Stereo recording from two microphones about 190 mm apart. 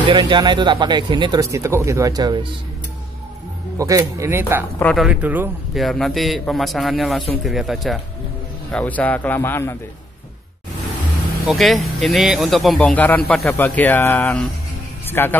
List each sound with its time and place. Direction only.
0.1 s speech: 25° right (ahead or behind)
3.7 s speech: 15° right (ahead or behind)
4.7 s speech: 5° left (ahead or behind)
5.0 s a man's voice: 5° right (ahead or behind); by 9.8 s 15° left (ahead or behind)
11.4 s a man's voice: centre (ahead or behind)